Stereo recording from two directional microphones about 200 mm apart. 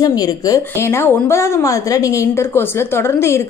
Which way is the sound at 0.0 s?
20° left (ahead or behind).